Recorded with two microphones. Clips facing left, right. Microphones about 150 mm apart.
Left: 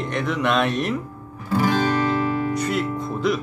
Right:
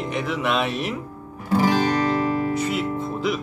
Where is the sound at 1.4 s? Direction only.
20° right (ahead or behind).